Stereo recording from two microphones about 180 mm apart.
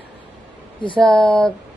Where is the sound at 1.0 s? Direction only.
5° left (ahead or behind).